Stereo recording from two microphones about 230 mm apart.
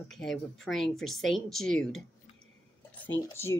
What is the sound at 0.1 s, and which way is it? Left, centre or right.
Speech, centre.